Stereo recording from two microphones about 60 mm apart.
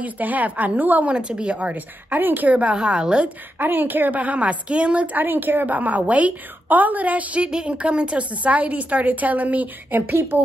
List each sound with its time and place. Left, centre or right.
0.0 s a woman's voice: right
1.1 s a woman's voice: centre; by 2.5 s right
2.5 s speech: centre
3.5 s a woman's voice: right